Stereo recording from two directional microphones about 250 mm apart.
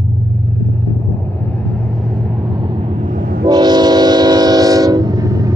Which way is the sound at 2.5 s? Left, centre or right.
Centre.